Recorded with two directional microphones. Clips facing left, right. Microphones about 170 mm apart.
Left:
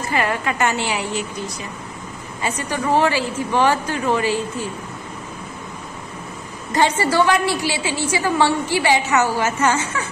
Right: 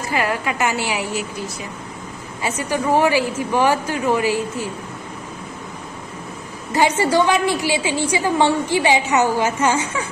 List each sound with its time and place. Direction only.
0.1 s a woman's voice: 5° right (ahead or behind)
2.4 s a woman's voice: 10° right (ahead or behind)
6.7 s a woman's voice: 10° right (ahead or behind)